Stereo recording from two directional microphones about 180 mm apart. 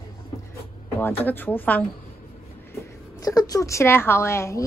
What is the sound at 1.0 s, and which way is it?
Speech, 10° left (ahead or behind).